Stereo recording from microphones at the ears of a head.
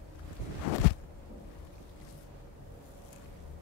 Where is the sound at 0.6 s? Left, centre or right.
Left.